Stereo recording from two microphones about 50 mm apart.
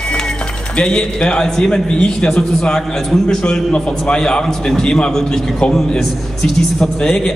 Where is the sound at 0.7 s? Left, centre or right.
Centre.